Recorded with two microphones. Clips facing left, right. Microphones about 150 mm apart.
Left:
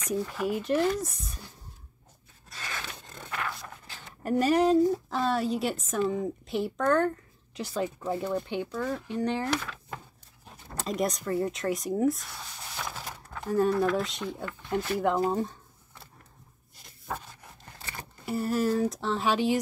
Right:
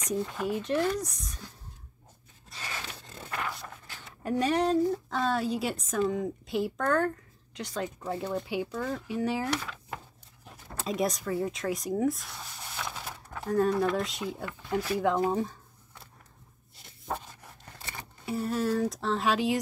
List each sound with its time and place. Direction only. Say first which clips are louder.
0.1 s a woman's voice: left 1 dB; 5° left (ahead or behind)
2.5 s scrape: left 1 dB; 30° right (ahead or behind)
4.2 s a woman's voice: left 3 dB; 5° left (ahead or behind)
18.2 s a woman's voice: left 2 dB; 5° left (ahead or behind)